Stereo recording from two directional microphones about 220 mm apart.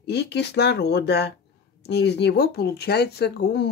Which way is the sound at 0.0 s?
50° left (ahead or behind).